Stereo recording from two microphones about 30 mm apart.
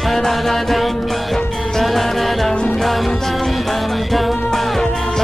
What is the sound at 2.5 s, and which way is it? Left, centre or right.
Music, left.